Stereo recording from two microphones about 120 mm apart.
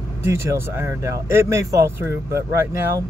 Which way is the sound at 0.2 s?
20° right (ahead or behind).